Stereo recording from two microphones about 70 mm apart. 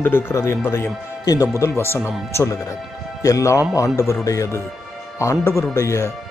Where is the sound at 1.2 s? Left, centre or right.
Left.